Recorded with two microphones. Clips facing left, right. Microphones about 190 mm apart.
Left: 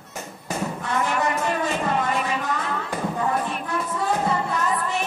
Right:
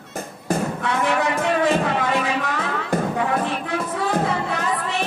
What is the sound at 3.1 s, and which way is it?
Music, 90° right.